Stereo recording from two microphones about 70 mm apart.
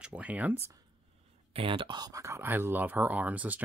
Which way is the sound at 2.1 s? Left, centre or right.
Right.